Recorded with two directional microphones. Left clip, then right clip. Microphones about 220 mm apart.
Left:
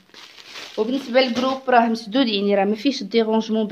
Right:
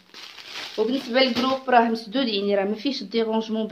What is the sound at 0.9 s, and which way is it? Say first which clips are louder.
Speech: left 3 dB; 35° left (ahead or behind).